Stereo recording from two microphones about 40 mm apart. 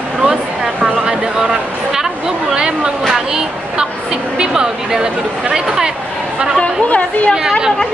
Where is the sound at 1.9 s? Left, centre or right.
Centre.